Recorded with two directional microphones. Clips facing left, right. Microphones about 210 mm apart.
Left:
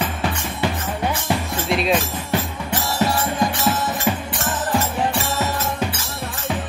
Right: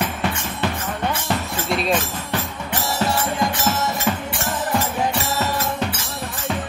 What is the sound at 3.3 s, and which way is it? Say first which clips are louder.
Music: left 1 dB; 15° left (ahead or behind).